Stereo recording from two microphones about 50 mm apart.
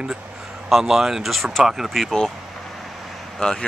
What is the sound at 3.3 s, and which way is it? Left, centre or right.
Speech, centre.